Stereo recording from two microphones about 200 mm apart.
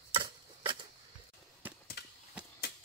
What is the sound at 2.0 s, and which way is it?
Horse, 55° left (ahead or behind).